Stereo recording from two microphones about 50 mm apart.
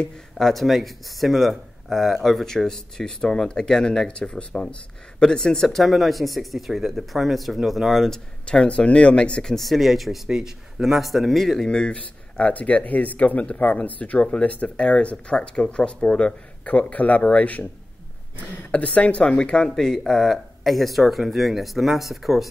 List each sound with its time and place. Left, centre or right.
0.4 s speech: centre
5.9 s speech: centre
8.1 s speech: centre
9.6 s speech: centre
11.6 s speech: centre
16.6 s speech: left
18.7 s speech: left; by 22.5 s centre